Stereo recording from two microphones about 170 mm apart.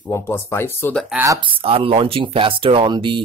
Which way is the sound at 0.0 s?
15° left (ahead or behind).